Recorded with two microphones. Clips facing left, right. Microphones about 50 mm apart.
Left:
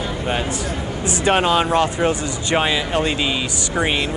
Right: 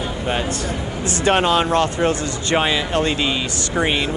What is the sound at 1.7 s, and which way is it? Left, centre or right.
Speech, centre.